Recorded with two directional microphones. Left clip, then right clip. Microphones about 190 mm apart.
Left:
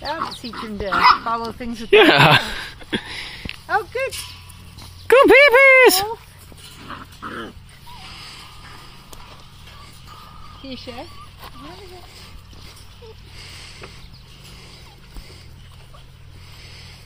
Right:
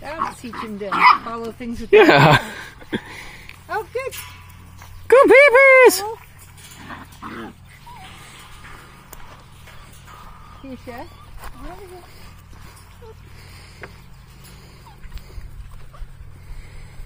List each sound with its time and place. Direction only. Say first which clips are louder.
0.5 s speech: left 1 dB; 5° right (ahead or behind)
1.3 s speech: left 4 dB; 25° left (ahead or behind)
1.9 s a sound: even; 5° right (ahead or behind)
3.6 s dog: left 4 dB; 25° left (ahead or behind)
5.0 s a sound: even; centre (ahead or behind)
6.9 s roaring cats: left 2 dB; 45° right (ahead or behind)